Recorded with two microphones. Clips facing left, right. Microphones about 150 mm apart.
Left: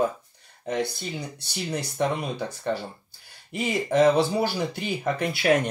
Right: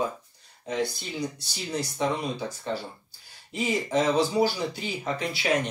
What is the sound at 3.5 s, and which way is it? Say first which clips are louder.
Speech: left 2 dB; 60° left (ahead or behind).